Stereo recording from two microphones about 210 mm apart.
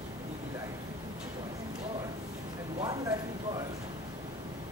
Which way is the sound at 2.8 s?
15° right (ahead or behind).